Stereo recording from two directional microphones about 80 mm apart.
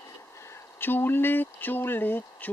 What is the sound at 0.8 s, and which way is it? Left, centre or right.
Speech, left.